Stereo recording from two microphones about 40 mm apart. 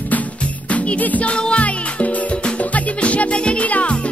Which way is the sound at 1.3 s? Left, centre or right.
Left.